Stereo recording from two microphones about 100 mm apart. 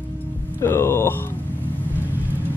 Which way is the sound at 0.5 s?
25° left (ahead or behind).